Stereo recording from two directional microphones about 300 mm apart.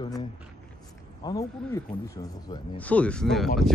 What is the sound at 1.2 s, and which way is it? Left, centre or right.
Speech, centre.